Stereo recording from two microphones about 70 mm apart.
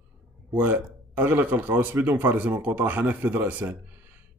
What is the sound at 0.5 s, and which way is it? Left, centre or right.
Speech, right.